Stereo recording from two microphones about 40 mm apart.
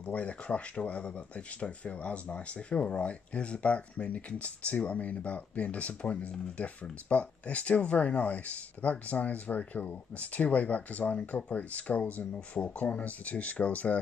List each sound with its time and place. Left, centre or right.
0.0 s speech: left